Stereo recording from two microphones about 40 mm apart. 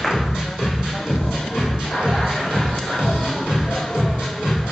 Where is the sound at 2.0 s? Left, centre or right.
Centre.